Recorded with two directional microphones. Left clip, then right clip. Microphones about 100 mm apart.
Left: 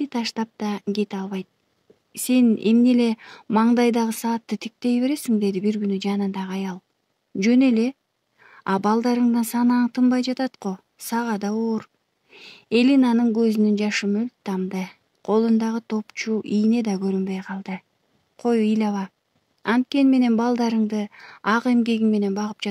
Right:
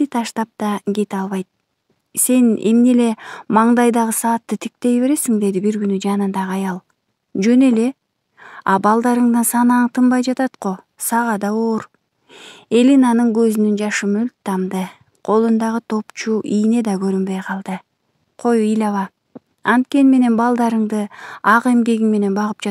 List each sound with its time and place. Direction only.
0.0 s speech: 35° right (ahead or behind)
3.4 s speech: 20° right (ahead or behind)
3.7 s a woman's voice: 35° right (ahead or behind)
10.1 s speech: 40° right (ahead or behind)